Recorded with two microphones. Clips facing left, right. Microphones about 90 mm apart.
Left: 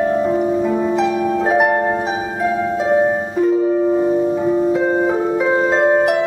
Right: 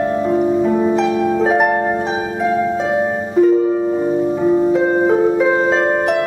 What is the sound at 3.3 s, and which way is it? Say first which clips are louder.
Music: right 7 dB; centre (ahead or behind).